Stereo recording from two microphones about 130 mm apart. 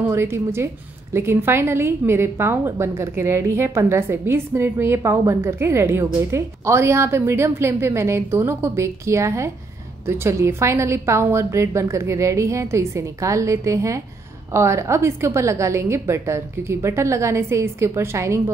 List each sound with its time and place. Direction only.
0.0 s a woman's voice: 20° right (ahead or behind)